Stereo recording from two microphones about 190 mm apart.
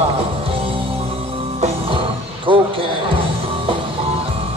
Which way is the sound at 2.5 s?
25° right (ahead or behind).